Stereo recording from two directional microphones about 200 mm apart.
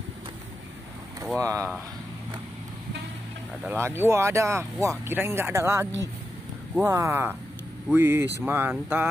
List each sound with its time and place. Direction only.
1.4 s speech: 15° right (ahead or behind)
3.6 s speech: 10° right (ahead or behind)